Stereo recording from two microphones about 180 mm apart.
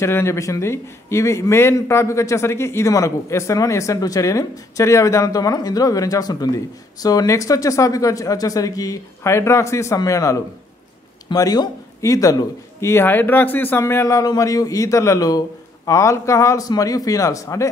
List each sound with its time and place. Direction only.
0.0 s a man's voice: 15° left (ahead or behind)